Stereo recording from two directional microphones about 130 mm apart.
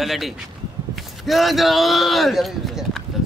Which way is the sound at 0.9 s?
Centre (ahead or behind).